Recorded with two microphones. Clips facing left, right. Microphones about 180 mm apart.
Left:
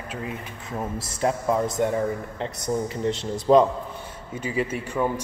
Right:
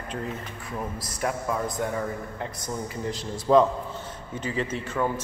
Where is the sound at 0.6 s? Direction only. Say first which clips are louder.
Left 4 dB; 25° left (ahead or behind).